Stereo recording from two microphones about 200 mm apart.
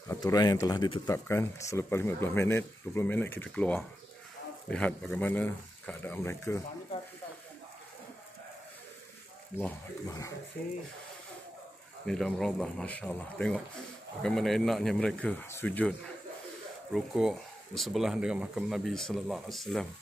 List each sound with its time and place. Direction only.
0.1 s speech: 20° left (ahead or behind)
9.6 s speech: 15° left (ahead or behind)
12.1 s speech: centre (ahead or behind)
16.9 s speech: centre (ahead or behind)